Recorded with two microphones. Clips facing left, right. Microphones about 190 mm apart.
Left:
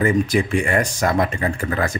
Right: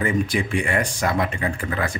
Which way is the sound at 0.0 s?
45° left (ahead or behind).